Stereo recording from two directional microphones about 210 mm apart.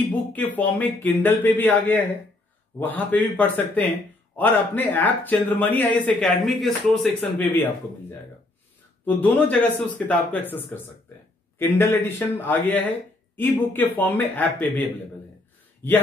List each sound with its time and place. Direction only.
0.1 s speech: 10° left (ahead or behind)